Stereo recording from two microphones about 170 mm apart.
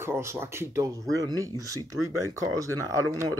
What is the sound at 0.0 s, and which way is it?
Speech, 15° right (ahead or behind).